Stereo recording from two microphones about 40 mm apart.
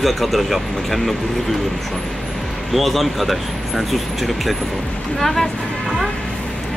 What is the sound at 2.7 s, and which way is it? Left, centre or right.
Speech, centre.